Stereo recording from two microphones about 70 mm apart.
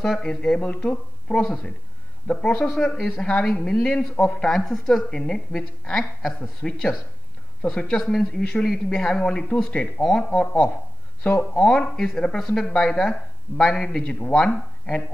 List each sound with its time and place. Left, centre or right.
0.0 s a woman's voice: centre
8.4 s a woman's voice: centre